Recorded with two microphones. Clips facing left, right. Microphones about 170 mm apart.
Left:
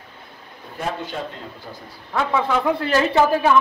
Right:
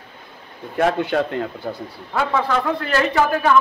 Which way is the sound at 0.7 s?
75° right (ahead or behind).